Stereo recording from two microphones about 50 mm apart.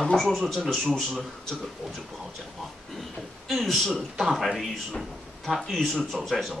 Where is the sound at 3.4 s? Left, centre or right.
Centre.